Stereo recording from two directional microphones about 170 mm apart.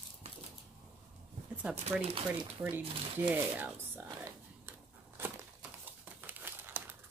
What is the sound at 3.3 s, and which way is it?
Speech, 10° right (ahead or behind).